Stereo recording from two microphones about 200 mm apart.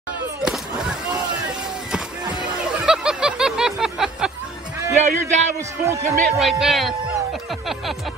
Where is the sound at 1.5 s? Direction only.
5° right (ahead or behind).